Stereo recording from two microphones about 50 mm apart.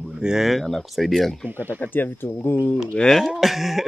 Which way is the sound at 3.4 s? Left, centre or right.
Centre.